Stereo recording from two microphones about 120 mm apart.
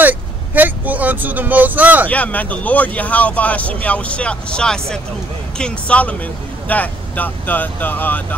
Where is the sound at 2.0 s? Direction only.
10° left (ahead or behind).